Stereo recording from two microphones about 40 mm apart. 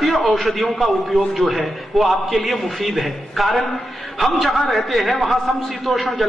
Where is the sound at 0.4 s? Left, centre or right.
Centre.